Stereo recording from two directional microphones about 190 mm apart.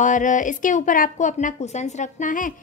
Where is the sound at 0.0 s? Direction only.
40° left (ahead or behind).